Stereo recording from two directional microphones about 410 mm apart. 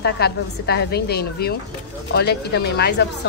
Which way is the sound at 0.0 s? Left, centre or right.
Left.